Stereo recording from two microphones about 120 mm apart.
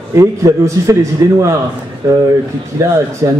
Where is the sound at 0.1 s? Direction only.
25° right (ahead or behind).